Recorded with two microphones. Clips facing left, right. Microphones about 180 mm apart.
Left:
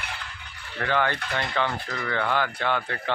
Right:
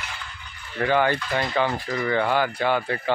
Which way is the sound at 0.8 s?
10° right (ahead or behind).